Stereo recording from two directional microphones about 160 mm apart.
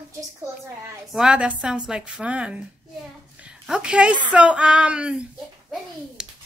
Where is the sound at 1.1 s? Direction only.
5° right (ahead or behind).